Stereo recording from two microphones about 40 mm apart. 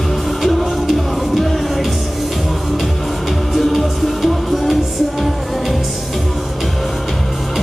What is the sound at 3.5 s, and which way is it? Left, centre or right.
Music, centre.